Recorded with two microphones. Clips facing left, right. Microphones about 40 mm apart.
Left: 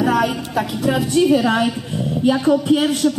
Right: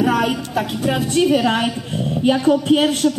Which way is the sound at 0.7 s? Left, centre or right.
Centre.